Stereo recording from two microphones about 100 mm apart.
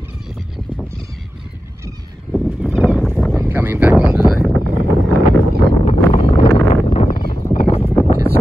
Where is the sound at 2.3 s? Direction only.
Centre (ahead or behind).